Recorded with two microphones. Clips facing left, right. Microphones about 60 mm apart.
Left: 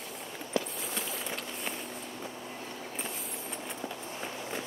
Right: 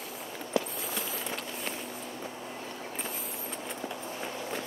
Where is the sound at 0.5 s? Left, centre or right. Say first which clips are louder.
Right 2 dB; centre.